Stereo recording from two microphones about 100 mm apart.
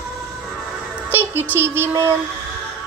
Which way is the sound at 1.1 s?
20° right (ahead or behind).